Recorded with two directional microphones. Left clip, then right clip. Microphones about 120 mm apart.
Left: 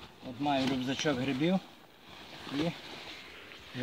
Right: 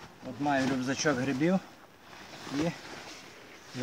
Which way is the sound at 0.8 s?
20° left (ahead or behind).